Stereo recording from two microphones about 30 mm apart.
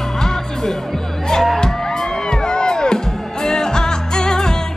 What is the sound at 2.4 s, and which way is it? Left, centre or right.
Music, left.